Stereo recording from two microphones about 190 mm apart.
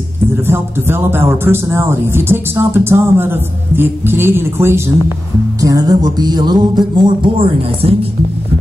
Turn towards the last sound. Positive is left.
turn(degrees=-30)  # may be behind; listen again after turning